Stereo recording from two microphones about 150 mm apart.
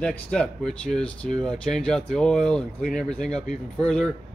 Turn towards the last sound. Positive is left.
turn(degrees=5)  # may be behind; listen again after turning